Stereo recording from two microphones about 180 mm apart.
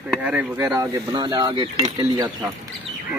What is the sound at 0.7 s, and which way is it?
Cutlery, 20° right (ahead or behind).